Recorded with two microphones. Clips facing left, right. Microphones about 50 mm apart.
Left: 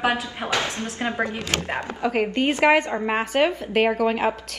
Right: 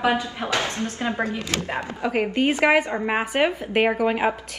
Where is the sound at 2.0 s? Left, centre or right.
Centre.